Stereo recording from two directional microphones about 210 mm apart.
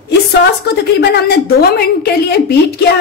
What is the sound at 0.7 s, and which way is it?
Speech, 50° left (ahead or behind).